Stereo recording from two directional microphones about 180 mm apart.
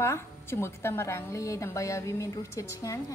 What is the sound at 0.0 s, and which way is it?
A woman's voice, 15° left (ahead or behind).